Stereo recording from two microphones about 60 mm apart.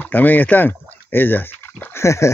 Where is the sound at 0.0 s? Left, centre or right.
Left.